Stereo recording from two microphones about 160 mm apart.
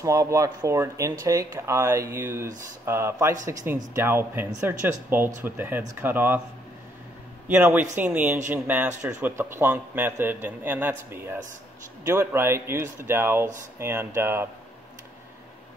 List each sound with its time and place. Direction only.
0.0 s a man's voice: 20° right (ahead or behind)
7.4 s a man's voice: 10° right (ahead or behind)